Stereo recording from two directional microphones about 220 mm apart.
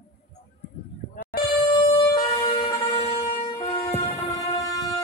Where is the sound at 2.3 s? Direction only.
25° left (ahead or behind).